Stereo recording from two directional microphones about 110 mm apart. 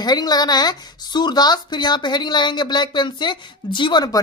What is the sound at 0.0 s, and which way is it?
Speech, 40° left (ahead or behind).